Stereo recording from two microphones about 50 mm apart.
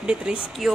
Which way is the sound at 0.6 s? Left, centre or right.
Centre.